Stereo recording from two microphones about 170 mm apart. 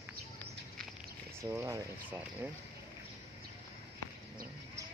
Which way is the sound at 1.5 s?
20° right (ahead or behind).